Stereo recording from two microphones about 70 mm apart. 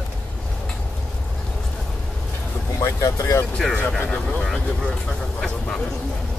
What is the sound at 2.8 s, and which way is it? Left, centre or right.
Vehicle, left.